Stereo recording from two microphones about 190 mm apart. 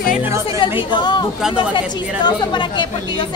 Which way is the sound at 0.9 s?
25° left (ahead or behind).